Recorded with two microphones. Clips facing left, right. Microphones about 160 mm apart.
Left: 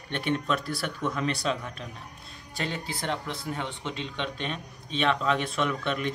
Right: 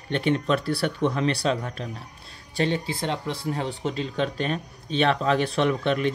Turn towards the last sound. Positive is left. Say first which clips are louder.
# right 6 dB
turn(degrees=-35)  # may be behind; listen again after turning